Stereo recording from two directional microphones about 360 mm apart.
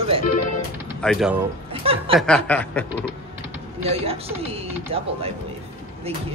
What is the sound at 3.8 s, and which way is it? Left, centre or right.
Speech, centre.